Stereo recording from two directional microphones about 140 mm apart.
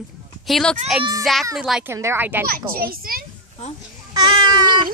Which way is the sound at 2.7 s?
90° right.